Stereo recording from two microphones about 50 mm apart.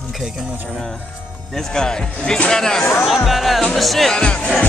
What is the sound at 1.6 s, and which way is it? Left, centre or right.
Speech, centre.